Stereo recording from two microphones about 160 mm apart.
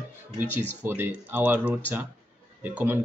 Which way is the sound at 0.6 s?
15° right (ahead or behind).